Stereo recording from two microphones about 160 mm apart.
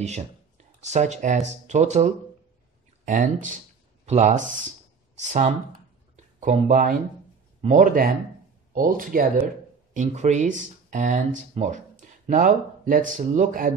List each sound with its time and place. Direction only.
0.8 s speech: 45° right (ahead or behind)
3.1 s speech: 55° right (ahead or behind)
6.1 s a sound: 50° right (ahead or behind)
7.6 s speech: 50° right (ahead or behind)
9.9 s speech: 45° right (ahead or behind)